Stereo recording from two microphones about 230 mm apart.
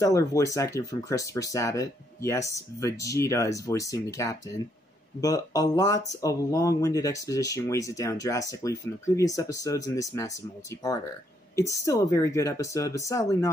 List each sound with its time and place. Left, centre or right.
0.0 s speech: centre
11.5 s speech: centre